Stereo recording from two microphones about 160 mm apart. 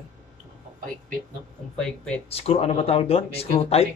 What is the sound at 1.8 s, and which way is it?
Speech, 5° left (ahead or behind).